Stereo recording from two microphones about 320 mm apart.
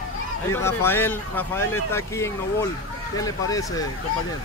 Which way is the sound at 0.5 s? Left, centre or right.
Centre.